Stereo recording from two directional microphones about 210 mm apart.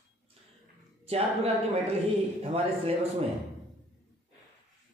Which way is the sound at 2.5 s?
30° right (ahead or behind).